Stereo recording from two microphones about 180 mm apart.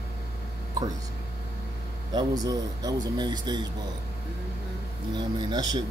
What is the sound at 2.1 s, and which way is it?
Speech, 20° right (ahead or behind).